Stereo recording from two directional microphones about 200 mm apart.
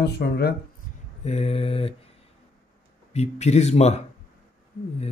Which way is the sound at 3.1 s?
35° left (ahead or behind).